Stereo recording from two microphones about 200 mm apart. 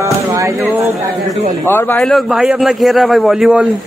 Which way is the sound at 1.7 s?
10° left (ahead or behind).